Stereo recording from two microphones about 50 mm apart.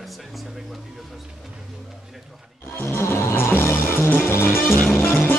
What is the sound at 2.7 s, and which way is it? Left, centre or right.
Music, left.